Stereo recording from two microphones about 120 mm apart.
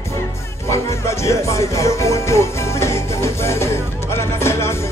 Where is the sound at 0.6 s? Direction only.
25° left (ahead or behind).